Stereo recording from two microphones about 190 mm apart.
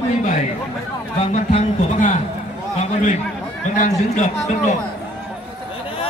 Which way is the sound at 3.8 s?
40° left (ahead or behind).